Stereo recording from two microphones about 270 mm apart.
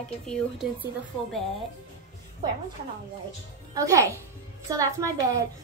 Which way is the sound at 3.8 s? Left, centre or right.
Centre.